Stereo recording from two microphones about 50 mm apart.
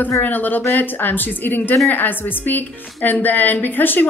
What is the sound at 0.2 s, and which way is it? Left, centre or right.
Speech, left.